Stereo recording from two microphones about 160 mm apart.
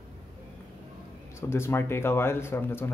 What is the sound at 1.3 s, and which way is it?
A man's voice, 15° left (ahead or behind).